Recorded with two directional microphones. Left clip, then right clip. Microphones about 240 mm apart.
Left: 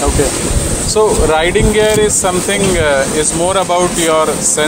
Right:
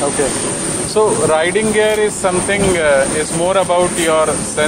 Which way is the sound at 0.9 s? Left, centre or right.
Left.